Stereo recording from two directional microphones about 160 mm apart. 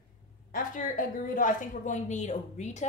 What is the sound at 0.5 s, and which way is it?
A woman's voice, 55° left (ahead or behind).